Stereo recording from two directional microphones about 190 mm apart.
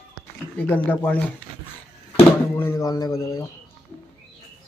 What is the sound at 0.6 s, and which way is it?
Speech, 10° left (ahead or behind).